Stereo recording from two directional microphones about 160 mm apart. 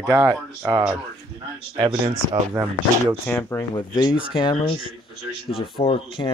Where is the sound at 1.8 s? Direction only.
35° right (ahead or behind).